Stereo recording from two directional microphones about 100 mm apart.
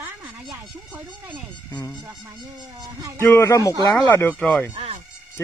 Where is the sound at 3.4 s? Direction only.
30° left (ahead or behind).